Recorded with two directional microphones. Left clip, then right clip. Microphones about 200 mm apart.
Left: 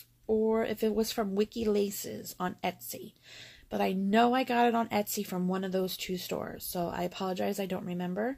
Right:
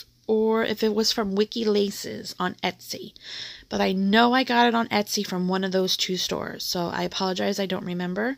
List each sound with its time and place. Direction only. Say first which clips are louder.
0.3 s speech: right 6 dB; 35° right (ahead or behind)